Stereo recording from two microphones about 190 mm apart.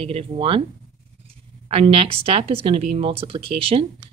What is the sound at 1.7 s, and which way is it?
Speech, 30° right (ahead or behind).